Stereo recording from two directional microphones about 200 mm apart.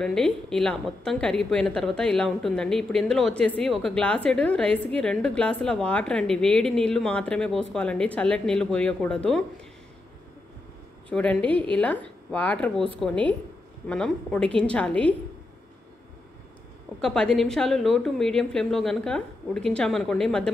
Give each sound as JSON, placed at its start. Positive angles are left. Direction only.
{"t": 0.0, "sound": "a woman's voice", "side_deg": 5}
{"t": 11.1, "sound": "a woman's voice", "side_deg": 5}
{"t": 17.0, "sound": "a woman's voice", "side_deg": 5}